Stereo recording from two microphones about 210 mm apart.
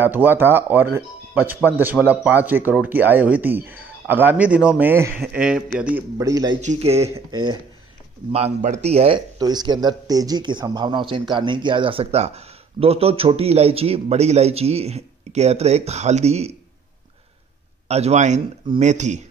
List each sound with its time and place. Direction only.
0.0 s speech: 10° right (ahead or behind)
6.6 s speech: 30° right (ahead or behind)
17.8 s speech: 30° right (ahead or behind)